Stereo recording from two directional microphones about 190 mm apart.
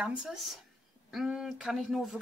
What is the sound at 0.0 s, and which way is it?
Speech, 5° right (ahead or behind).